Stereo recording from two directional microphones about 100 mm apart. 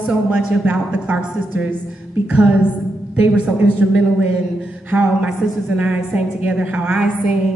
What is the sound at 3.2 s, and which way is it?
A woman's voice, 15° right (ahead or behind).